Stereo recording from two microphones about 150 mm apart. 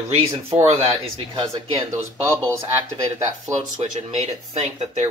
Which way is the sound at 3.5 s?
40° right (ahead or behind).